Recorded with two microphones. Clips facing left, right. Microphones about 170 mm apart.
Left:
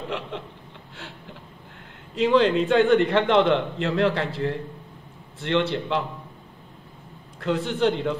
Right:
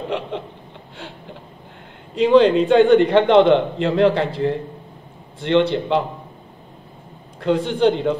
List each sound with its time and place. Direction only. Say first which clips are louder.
0.0 s a sound: right 6 dB; 25° right (ahead or behind)
2.1 s a man's voice: right 6 dB; 20° right (ahead or behind)
7.4 s a man's voice: right 6 dB; 25° right (ahead or behind)